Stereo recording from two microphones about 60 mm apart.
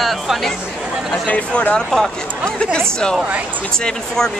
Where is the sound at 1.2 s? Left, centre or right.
Left.